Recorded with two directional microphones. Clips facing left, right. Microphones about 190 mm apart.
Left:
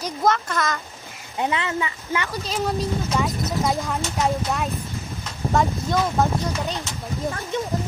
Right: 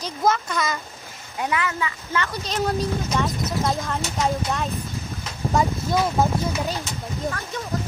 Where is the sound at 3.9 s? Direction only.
Centre (ahead or behind).